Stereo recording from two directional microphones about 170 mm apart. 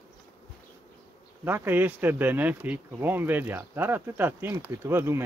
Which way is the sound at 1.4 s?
15° right (ahead or behind).